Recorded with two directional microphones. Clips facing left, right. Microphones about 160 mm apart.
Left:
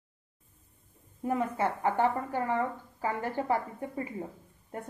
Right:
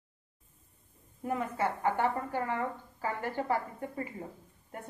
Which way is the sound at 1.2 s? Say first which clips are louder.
Left 3 dB; 30° left (ahead or behind).